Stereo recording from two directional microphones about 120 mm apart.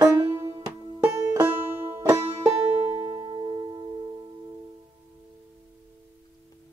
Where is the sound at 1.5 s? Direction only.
50° right (ahead or behind).